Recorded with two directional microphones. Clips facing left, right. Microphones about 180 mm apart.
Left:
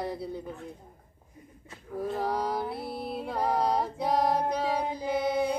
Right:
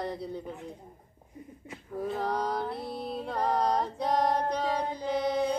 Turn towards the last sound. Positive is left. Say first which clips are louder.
# left 1 dB
turn(degrees=5)  # may be behind; listen again after turning